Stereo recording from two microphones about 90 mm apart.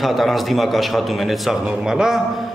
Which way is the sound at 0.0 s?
Centre (ahead or behind).